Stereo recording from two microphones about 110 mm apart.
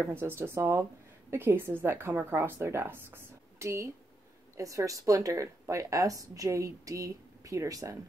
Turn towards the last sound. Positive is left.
turn(degrees=-30)  # may be behind; listen again after turning